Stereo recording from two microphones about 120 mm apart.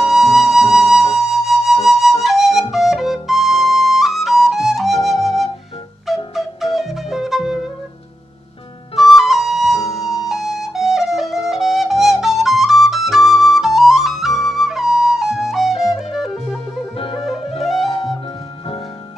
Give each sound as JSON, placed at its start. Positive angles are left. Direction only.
{"t": 0.0, "sound": "music", "side_deg": -5}
{"t": 2.7, "sound": "flute", "side_deg": 0}
{"t": 6.3, "sound": "music", "side_deg": 0}
{"t": 8.9, "sound": "flute", "side_deg": 0}
{"t": 9.8, "sound": "music", "side_deg": 30}
{"t": 10.0, "sound": "flute", "side_deg": 0}
{"t": 16.9, "sound": "music", "side_deg": 50}